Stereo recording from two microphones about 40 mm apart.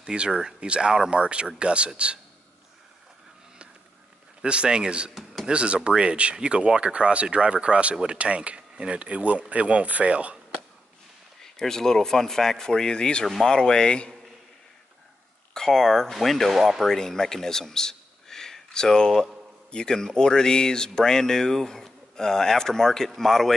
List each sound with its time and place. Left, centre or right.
0.0 s speech: right
0.3 s speech: centre
4.4 s speech: right
8.2 s speech: right
11.4 s speech: centre
15.5 s speech: centre
16.8 s speech: centre